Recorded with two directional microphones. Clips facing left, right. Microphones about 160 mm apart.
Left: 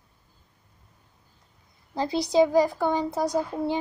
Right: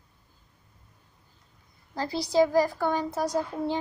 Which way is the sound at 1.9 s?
20° left (ahead or behind).